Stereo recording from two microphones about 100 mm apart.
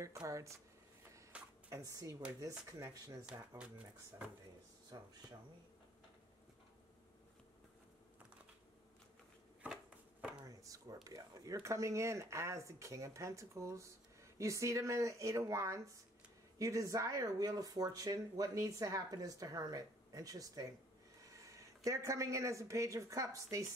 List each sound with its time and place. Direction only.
0.3 s speech: 30° right (ahead or behind)
1.3 s a sound: 10° right (ahead or behind)
1.7 s speech: 35° right (ahead or behind)
3.3 s speech: 10° right (ahead or behind)
4.9 s speech: 40° right (ahead or behind)
10.4 s a sound: 35° right (ahead or behind)
11.1 s speech: 35° right (ahead or behind)